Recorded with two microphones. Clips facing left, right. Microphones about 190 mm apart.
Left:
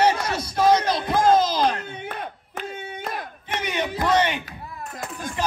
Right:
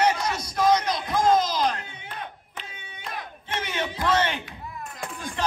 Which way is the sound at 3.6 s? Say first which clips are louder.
Left 4 dB; 15° left (ahead or behind).